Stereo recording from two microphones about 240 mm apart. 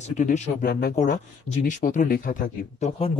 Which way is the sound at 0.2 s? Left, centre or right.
Left.